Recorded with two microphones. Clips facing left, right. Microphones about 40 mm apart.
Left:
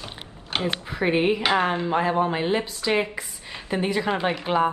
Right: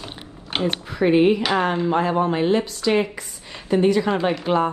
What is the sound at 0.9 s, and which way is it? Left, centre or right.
Speech, centre.